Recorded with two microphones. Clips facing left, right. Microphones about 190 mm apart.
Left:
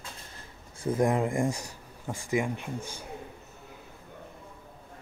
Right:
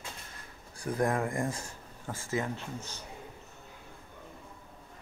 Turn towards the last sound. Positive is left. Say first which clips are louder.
# left 4 dB
turn(degrees=10)  # may be behind; listen again after turning